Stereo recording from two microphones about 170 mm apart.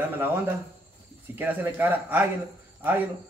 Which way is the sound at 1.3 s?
10° right (ahead or behind).